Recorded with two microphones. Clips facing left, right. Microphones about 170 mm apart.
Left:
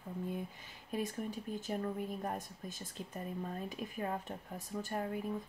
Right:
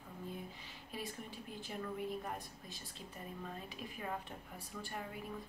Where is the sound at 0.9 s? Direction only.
45° left (ahead or behind).